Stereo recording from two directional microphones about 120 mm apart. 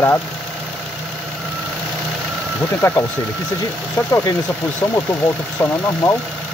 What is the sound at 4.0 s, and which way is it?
Speech, 20° left (ahead or behind).